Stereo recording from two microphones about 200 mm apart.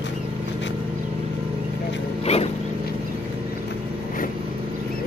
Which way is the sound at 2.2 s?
30° left (ahead or behind).